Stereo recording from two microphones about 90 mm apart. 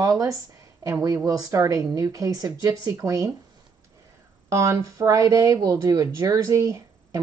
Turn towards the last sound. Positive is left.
turn(degrees=-35)  # may be behind; listen again after turning